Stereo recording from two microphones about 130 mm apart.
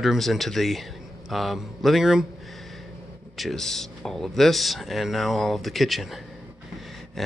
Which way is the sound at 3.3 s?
Centre (ahead or behind).